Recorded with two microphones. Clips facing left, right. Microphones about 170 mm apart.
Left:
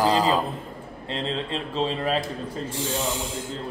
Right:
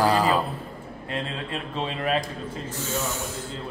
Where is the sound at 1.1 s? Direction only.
30° left (ahead or behind).